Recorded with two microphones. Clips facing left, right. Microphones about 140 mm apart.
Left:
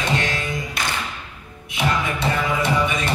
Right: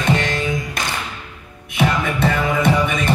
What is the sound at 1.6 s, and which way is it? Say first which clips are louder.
Music: right 3 dB; 55° right (ahead or behind).